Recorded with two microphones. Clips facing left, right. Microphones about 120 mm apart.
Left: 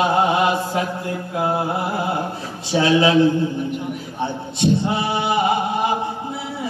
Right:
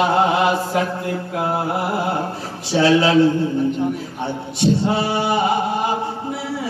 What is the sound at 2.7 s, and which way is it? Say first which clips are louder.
Chant: right 1 dB; 25° left (ahead or behind).